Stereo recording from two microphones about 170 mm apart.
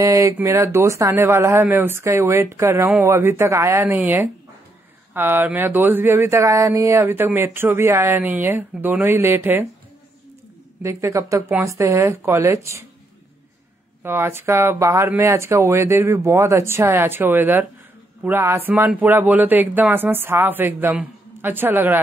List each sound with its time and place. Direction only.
0.0 s speech: 20° right (ahead or behind)
10.8 s speech: 15° right (ahead or behind)
14.0 s speech: 15° right (ahead or behind)